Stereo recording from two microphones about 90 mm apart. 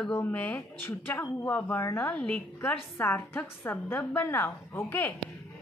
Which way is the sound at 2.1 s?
15° left (ahead or behind).